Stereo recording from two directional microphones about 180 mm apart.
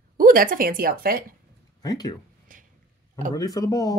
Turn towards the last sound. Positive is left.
turn(degrees=20)  # may be behind; listen again after turning